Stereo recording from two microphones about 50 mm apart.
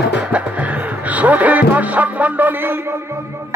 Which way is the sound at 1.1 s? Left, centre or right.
Right.